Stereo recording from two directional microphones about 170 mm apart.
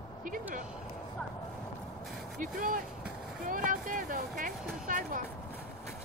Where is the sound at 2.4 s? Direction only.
55° right (ahead or behind).